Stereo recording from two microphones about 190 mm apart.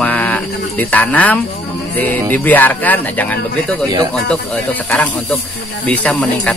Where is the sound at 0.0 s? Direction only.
5° left (ahead or behind).